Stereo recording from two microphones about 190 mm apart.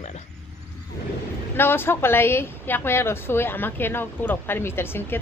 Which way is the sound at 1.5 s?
10° left (ahead or behind).